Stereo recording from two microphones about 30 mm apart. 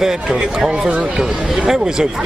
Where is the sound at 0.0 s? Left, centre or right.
Centre.